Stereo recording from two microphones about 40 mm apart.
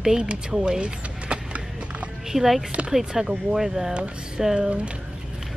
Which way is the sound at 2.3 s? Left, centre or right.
Centre.